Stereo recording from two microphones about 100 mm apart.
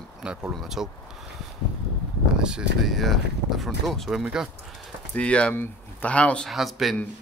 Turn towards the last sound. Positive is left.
turn(degrees=0)  # may be behind; listen again after turning